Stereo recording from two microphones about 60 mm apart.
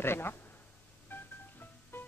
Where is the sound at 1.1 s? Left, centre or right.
Left.